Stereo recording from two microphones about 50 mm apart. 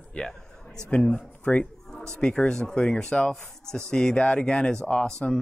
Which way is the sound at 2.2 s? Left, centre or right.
Centre.